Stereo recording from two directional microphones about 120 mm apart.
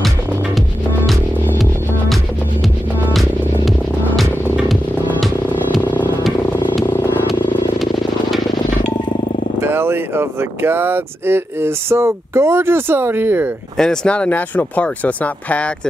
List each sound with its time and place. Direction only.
3.1 s music: centre (ahead or behind)
5.8 s music: 15° left (ahead or behind)
6.9 s vehicle: 20° left (ahead or behind)
7.8 s a sound: centre (ahead or behind)
9.6 s speech: 20° right (ahead or behind)
13.7 s speech: 5° left (ahead or behind)